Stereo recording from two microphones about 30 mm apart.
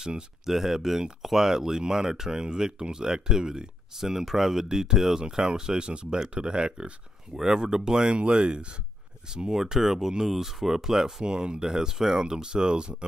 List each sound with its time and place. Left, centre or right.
0.5 s speech: centre
4.0 s speech: centre
5.2 s speech: right
7.3 s speech: centre
9.6 s speech: centre
11.2 s speech: right
11.6 s speech: centre